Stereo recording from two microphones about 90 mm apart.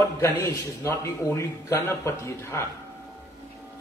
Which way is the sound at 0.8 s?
35° left (ahead or behind).